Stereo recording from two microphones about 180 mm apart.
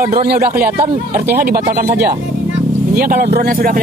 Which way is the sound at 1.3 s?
55° right (ahead or behind).